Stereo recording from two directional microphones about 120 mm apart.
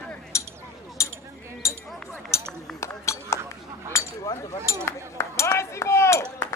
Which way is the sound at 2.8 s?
20° left (ahead or behind).